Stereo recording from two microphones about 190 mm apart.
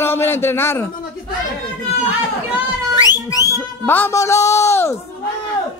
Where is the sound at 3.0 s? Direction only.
20° left (ahead or behind).